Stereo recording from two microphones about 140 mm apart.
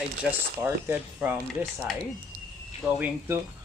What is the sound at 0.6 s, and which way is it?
Speech, 15° right (ahead or behind).